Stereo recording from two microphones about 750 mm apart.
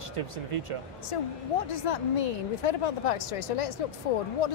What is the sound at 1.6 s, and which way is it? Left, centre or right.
Speech, left.